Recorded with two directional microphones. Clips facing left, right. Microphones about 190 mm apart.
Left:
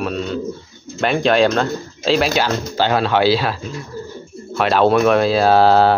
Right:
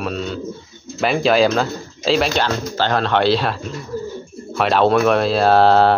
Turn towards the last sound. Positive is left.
turn(degrees=0)  # may be behind; listen again after turning